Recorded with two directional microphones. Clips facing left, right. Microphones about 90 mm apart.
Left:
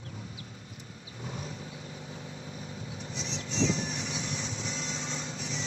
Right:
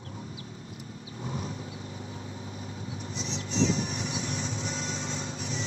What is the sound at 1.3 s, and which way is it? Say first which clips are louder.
Vehicle: right 4 dB; 35° right (ahead or behind).